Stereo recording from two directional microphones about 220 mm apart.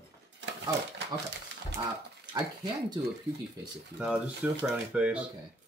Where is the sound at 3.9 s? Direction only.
5° right (ahead or behind).